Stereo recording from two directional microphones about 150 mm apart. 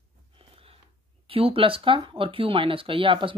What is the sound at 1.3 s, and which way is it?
Speech, 40° right (ahead or behind).